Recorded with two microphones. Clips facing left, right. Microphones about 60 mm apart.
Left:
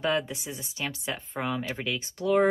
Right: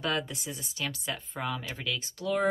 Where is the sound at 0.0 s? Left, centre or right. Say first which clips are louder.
Left 4 dB; centre.